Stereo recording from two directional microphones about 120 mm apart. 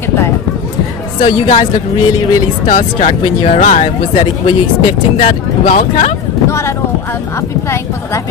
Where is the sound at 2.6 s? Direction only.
90° left.